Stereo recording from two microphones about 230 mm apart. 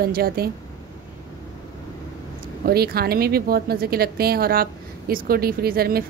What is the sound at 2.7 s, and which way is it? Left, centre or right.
A woman's voice, right.